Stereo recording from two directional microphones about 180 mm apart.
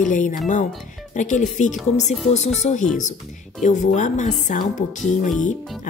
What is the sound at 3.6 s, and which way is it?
A woman's voice, 40° left (ahead or behind).